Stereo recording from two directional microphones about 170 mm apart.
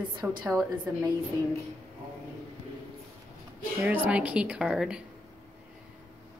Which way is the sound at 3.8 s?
10° right (ahead or behind).